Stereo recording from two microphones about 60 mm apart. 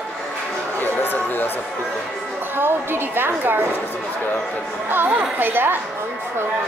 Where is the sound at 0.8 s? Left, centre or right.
Left.